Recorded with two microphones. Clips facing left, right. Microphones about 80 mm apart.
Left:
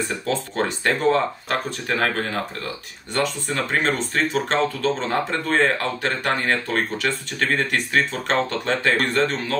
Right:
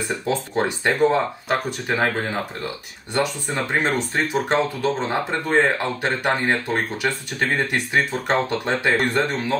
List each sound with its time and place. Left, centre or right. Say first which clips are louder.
0.3 s speech: right 2 dB; centre